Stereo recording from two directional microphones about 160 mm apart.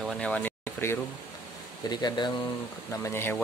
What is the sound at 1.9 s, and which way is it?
Speech, 25° left (ahead or behind).